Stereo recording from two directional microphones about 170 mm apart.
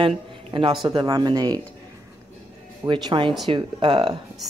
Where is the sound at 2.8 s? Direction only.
30° right (ahead or behind).